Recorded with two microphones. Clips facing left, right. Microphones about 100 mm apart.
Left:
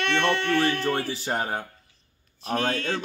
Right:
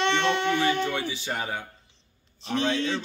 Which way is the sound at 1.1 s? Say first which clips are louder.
Left 3 dB; 45° left (ahead or behind).